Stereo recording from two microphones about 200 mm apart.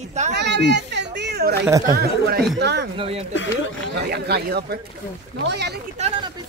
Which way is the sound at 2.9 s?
30° right (ahead or behind).